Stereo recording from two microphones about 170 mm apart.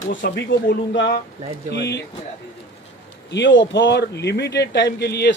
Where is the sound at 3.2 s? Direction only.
90° left.